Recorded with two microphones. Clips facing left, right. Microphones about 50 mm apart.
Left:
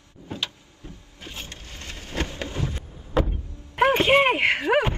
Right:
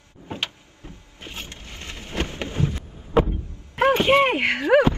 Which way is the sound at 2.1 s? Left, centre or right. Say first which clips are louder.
Right 2 dB; right.